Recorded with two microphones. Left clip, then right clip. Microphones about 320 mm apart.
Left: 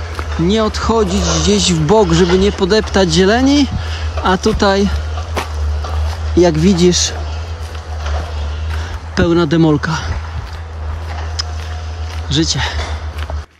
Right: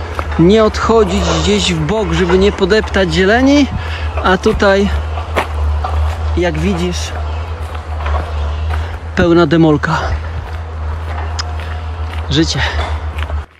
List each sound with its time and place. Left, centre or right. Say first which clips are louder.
0.5 s speech: right 4 dB; centre
6.3 s speech: left 5 dB; centre
9.1 s speech: right 3 dB; centre
12.3 s speech: right 2 dB; centre